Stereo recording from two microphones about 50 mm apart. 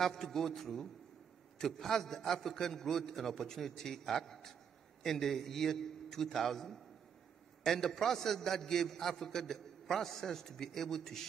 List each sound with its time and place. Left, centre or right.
0.0 s a man's voice: centre